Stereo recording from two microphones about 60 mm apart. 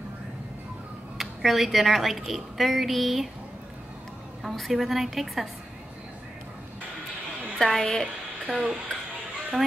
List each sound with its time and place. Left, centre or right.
1.1 s a woman's voice: centre
4.4 s a woman's voice: centre
7.5 s a woman's voice: centre
8.5 s speech: centre